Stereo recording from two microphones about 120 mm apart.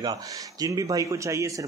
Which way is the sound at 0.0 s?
30° right (ahead or behind).